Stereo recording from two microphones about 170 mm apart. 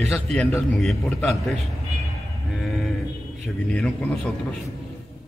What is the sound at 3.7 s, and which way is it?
Speech, 5° left (ahead or behind).